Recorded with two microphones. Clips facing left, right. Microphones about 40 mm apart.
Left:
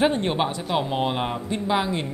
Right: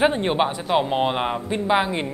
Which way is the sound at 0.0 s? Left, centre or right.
Centre.